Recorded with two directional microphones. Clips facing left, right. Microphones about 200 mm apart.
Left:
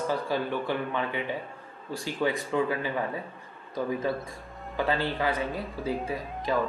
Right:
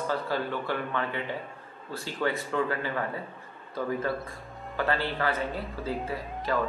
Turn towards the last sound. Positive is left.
turn(degrees=15)  # may be behind; listen again after turning